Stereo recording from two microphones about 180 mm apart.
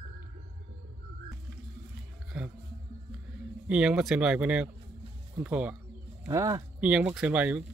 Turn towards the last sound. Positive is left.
turn(degrees=-5)  # may be behind; listen again after turning